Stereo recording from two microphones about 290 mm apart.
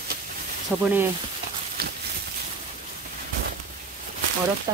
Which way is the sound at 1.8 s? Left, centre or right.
Right.